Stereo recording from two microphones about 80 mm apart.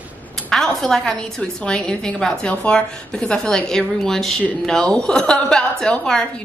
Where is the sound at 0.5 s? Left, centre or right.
Centre.